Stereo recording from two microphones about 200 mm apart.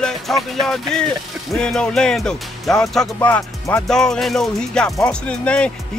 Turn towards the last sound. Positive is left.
turn(degrees=5)  # may be behind; listen again after turning